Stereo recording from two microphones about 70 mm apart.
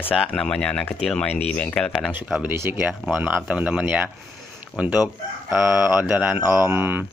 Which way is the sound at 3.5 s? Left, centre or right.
Centre.